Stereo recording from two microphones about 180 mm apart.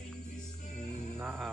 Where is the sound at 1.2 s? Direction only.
10° right (ahead or behind).